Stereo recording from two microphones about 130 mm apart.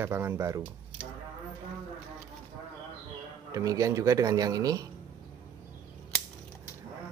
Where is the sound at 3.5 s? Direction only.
25° right (ahead or behind).